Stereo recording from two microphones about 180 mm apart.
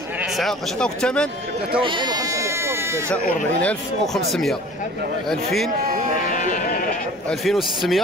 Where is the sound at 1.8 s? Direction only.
25° right (ahead or behind).